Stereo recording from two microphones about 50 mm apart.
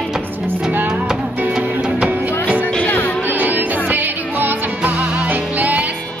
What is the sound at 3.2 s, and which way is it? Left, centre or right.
Music, right.